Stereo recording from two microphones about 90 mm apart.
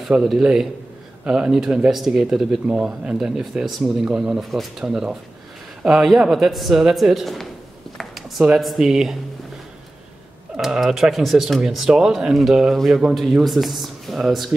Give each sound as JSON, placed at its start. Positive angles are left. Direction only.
{"t": 0.0, "sound": "speech", "side_deg": -5}
{"t": 10.5, "sound": "speech", "side_deg": -5}